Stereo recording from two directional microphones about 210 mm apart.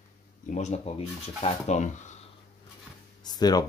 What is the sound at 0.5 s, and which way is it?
Speech, 30° left (ahead or behind).